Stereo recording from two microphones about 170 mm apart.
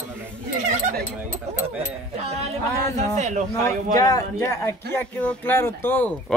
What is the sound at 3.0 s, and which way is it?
Speech, 40° right (ahead or behind).